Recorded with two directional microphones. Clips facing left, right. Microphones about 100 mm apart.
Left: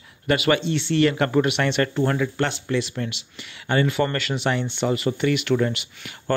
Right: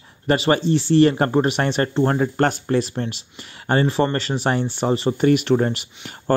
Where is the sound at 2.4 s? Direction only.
45° right (ahead or behind).